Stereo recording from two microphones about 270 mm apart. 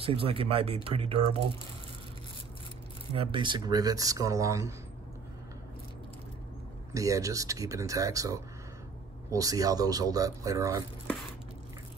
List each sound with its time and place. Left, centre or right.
0.0 s speech: centre
3.2 s speech: centre
6.9 s speech: centre